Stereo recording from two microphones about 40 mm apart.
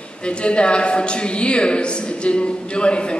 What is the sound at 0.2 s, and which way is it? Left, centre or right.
A man's voice, left.